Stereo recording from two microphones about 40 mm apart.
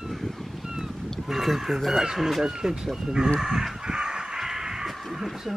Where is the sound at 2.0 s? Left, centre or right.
Centre.